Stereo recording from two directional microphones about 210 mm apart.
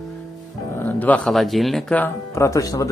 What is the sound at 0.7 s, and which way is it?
Speech, 10° left (ahead or behind).